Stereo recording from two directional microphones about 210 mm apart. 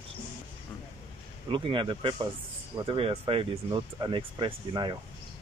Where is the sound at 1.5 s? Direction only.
25° right (ahead or behind).